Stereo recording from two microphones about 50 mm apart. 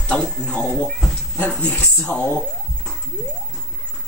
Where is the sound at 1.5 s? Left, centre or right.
Left.